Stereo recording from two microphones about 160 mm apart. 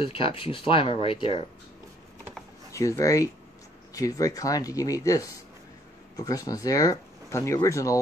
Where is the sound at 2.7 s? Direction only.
20° left (ahead or behind).